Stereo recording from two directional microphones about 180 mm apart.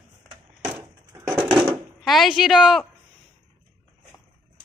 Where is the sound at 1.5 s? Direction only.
Centre (ahead or behind).